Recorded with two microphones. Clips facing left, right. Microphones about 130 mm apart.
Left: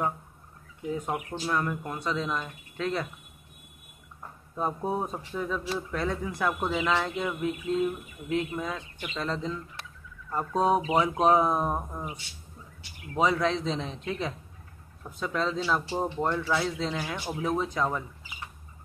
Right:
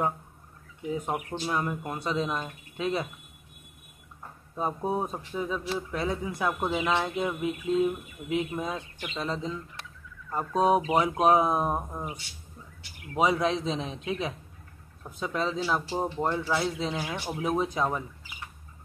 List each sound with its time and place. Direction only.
0.9 s speech: 10° right (ahead or behind)
4.6 s speech: 5° right (ahead or behind)
8.5 s speech: 20° right (ahead or behind)
9.2 s speech: 10° right (ahead or behind)
13.1 s speech: 15° right (ahead or behind)